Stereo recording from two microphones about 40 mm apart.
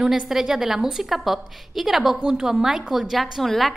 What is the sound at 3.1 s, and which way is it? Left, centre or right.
Speech, centre.